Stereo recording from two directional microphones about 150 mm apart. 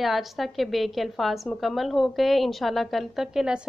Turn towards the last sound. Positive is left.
turn(degrees=-5)  # may be behind; listen again after turning